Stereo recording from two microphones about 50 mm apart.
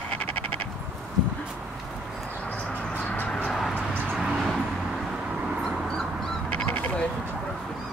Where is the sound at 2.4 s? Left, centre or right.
Left.